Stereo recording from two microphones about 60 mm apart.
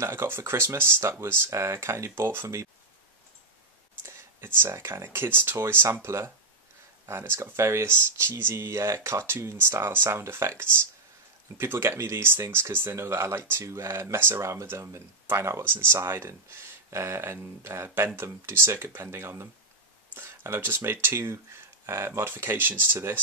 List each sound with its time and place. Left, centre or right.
0.0 s speech: right
4.4 s speech: right
22.2 s speech: right